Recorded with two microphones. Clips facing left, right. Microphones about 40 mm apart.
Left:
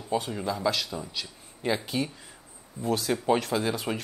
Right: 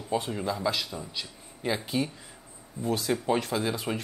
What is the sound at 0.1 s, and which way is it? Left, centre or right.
Speech, centre.